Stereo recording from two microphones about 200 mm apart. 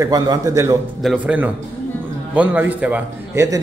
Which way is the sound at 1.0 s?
5° right (ahead or behind).